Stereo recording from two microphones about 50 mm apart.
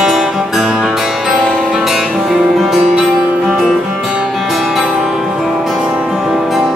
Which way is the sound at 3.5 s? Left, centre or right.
Centre.